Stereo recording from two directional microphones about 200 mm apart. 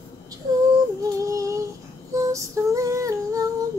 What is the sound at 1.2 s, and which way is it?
Female singing, 15° right (ahead or behind).